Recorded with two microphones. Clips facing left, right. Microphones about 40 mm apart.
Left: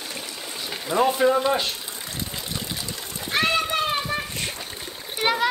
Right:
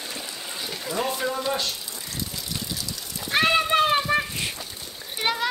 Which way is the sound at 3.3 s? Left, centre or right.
Centre.